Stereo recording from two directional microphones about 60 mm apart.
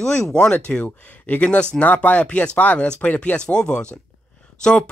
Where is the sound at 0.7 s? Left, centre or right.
Centre.